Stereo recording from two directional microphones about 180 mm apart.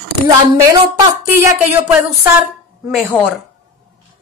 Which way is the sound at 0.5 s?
15° right (ahead or behind).